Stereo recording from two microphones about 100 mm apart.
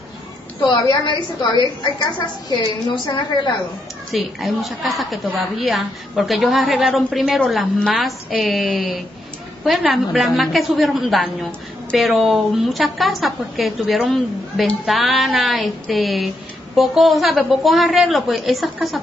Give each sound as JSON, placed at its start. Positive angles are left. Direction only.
{"t": 0.6, "sound": "a woman's voice", "side_deg": 55}
{"t": 4.1, "sound": "a woman's voice", "side_deg": 0}